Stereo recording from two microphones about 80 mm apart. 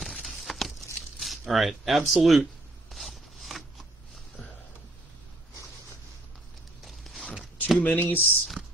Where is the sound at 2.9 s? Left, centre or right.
Centre.